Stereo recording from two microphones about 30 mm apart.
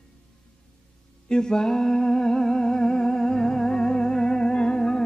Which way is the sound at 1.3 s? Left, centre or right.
Left.